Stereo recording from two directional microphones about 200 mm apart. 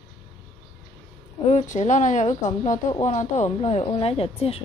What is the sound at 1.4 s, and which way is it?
Speech, 35° left (ahead or behind).